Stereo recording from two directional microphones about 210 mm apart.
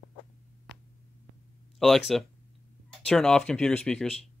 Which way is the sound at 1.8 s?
Centre (ahead or behind).